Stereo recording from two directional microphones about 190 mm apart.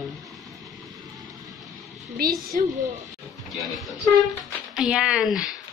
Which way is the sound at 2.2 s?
55° right (ahead or behind).